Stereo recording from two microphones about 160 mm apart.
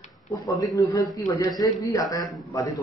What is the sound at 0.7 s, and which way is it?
A man's voice, 20° left (ahead or behind).